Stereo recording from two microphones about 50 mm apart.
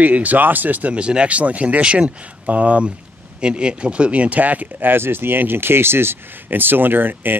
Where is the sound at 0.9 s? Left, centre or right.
Right.